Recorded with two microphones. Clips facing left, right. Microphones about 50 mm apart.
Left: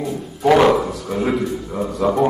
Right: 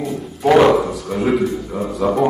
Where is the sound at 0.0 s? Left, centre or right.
Centre.